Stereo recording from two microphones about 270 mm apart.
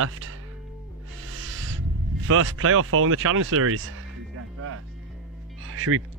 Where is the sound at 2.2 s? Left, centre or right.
Right.